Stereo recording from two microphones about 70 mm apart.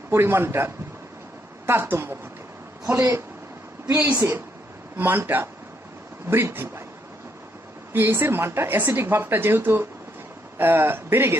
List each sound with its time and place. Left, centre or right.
0.1 s a woman's voice: right
3.9 s a woman's voice: right
7.9 s a woman's voice: right